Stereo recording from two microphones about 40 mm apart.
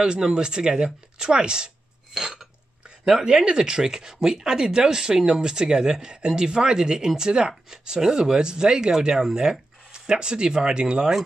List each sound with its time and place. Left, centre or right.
0.0 s speech: centre
2.1 s speech: centre